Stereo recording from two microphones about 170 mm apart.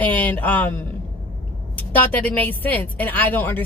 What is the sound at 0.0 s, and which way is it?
Speech, 10° left (ahead or behind).